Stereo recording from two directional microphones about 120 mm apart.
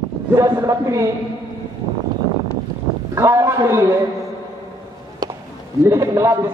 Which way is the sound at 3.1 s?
25° right (ahead or behind).